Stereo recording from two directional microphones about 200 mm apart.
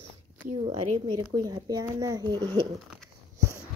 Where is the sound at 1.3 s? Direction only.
20° right (ahead or behind).